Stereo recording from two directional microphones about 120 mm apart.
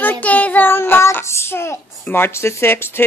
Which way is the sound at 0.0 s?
15° left (ahead or behind).